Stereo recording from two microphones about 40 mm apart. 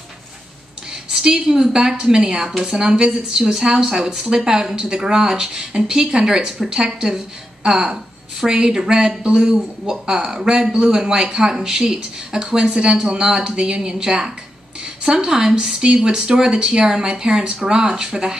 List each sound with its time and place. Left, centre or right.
1.1 s a woman's voice: centre